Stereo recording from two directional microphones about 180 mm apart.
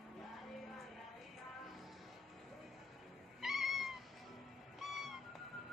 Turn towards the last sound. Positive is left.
turn(degrees=0)  # may be behind; listen again after turning